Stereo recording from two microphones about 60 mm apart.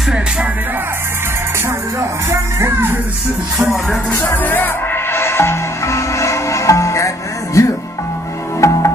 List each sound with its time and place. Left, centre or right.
2.0 s speech: right
4.3 s music: left
7.6 s speech: left
8.5 s music: left